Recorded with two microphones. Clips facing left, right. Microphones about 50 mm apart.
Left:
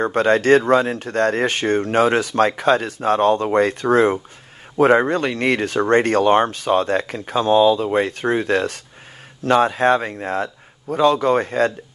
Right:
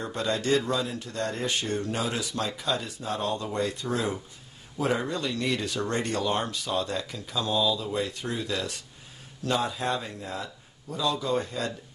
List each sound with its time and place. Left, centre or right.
0.0 s speech: left